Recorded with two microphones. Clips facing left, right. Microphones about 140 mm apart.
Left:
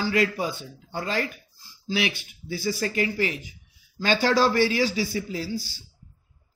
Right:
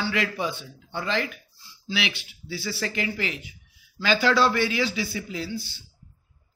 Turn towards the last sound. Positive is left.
turn(degrees=40)  # may be behind; listen again after turning